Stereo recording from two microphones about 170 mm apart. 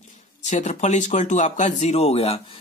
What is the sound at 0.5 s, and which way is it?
Speech, 45° left (ahead or behind).